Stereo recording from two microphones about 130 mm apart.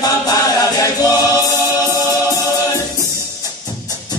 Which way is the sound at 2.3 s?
25° left (ahead or behind).